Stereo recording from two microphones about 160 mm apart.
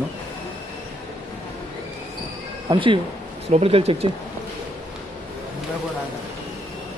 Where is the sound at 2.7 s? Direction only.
30° right (ahead or behind).